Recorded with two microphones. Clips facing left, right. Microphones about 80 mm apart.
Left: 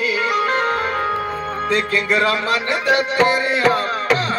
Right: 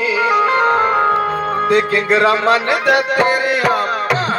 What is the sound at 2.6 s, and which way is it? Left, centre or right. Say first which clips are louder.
Music: right 3 dB; right.